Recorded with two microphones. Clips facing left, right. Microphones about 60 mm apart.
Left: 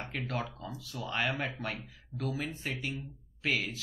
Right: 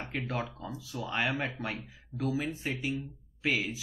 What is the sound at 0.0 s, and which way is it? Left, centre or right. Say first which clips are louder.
Speech: right 1 dB; centre.